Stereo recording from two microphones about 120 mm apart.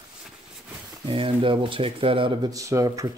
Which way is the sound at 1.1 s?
45° right (ahead or behind).